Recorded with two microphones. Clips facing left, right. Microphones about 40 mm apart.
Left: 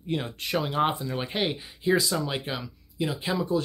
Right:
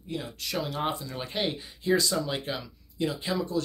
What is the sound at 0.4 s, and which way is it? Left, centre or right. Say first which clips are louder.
Speech: left 5 dB; left.